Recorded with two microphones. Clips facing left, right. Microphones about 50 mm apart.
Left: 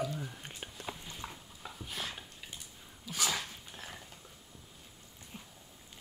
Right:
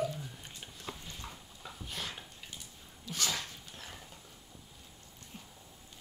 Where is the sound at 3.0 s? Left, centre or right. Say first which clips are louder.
Left 1 dB; centre.